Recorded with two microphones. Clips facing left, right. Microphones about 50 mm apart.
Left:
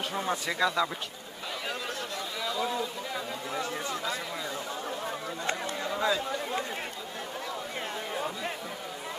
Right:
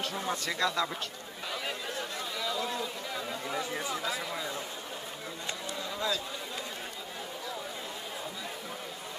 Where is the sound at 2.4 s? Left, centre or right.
Centre.